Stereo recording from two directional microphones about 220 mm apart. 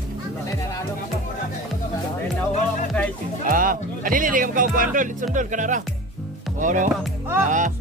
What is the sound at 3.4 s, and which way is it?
Speech, 40° right (ahead or behind).